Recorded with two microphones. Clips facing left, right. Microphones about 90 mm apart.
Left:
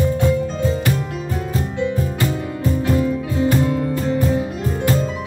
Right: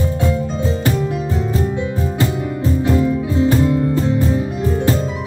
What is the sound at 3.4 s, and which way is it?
Music, 20° right (ahead or behind).